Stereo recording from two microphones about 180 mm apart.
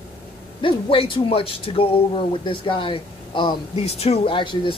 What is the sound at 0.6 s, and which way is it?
Speech, 30° left (ahead or behind).